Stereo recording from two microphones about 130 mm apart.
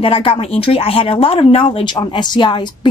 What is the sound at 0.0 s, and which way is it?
A woman's voice, 45° left (ahead or behind).